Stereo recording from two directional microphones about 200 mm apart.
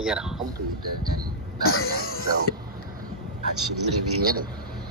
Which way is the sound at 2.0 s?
90° left.